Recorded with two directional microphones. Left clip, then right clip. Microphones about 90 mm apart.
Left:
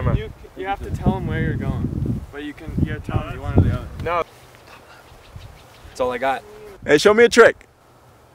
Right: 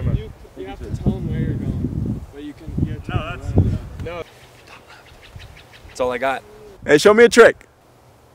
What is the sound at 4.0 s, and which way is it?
Speech, 10° left (ahead or behind).